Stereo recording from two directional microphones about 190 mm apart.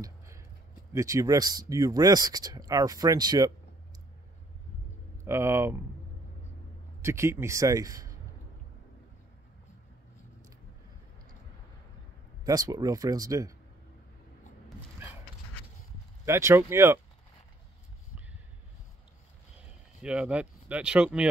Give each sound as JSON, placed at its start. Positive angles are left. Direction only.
{"t": 0.9, "sound": "speech", "side_deg": -15}
{"t": 5.2, "sound": "speech", "side_deg": -15}
{"t": 7.0, "sound": "speech", "side_deg": -15}
{"t": 12.4, "sound": "speech", "side_deg": -20}
{"t": 16.3, "sound": "speech", "side_deg": -15}
{"t": 20.0, "sound": "speech", "side_deg": -5}